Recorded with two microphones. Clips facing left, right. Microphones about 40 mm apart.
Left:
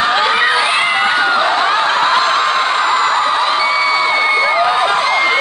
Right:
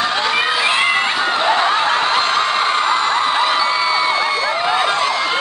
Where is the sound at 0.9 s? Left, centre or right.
Left.